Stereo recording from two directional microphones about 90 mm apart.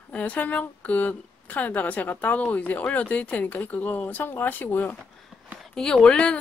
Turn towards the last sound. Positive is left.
turn(degrees=10)  # may be behind; listen again after turning